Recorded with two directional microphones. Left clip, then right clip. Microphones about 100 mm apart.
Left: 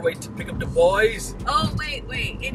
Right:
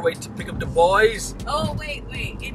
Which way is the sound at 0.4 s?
20° right (ahead or behind).